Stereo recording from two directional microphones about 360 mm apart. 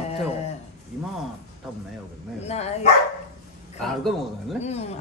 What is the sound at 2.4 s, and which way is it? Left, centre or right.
Dog, centre.